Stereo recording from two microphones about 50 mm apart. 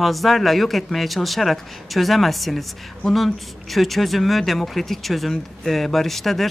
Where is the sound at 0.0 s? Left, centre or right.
Centre.